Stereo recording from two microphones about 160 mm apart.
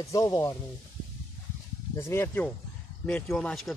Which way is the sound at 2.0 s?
15° left (ahead or behind).